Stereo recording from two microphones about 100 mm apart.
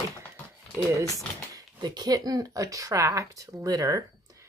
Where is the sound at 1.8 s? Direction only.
45° right (ahead or behind).